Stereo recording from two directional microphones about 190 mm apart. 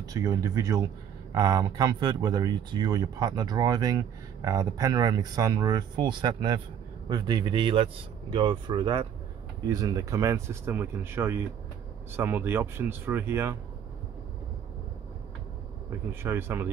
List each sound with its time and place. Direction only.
0.0 s speech: 20° right (ahead or behind)
16.1 s speech: 10° right (ahead or behind)